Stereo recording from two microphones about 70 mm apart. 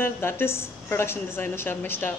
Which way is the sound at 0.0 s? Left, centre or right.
Left.